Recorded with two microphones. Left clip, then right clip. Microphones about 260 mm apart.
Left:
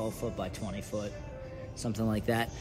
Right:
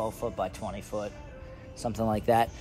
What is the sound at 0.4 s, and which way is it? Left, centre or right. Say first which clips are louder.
A man's voice: right 5 dB; centre.